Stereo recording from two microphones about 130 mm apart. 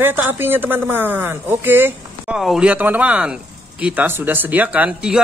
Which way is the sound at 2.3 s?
5° right (ahead or behind).